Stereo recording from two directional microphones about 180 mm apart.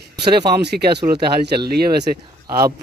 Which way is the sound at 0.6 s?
70° right (ahead or behind).